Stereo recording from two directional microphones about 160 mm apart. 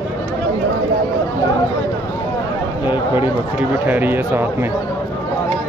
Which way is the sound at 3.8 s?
10° right (ahead or behind).